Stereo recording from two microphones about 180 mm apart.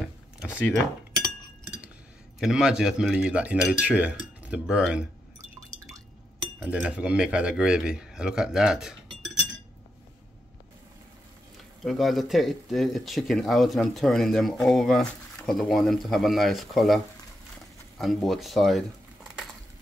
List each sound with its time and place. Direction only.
2.4 s speech: 5° right (ahead or behind)
6.6 s speech: 5° right (ahead or behind)
11.8 s speech: centre (ahead or behind)
17.9 s crumpling: centre (ahead or behind)